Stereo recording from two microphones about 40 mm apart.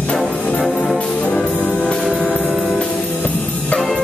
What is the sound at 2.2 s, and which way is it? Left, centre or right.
Music, left.